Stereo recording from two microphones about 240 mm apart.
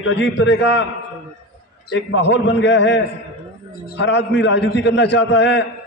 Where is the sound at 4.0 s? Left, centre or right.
Left.